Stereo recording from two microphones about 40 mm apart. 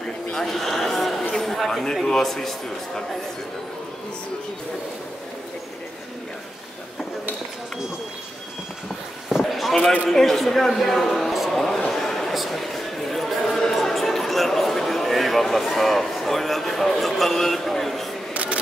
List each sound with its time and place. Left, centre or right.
0.3 s a sound: centre
2.1 s a man's voice: centre
9.4 s basketball bounce: centre
10.0 s speech: centre
11.9 s a sound: centre
18.3 s single-lens reflex camera: right